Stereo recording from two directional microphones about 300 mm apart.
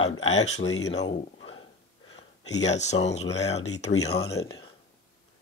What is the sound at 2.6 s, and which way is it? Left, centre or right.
A man's voice, left.